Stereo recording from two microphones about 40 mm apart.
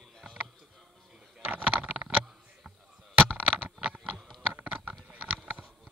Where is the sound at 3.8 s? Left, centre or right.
Right.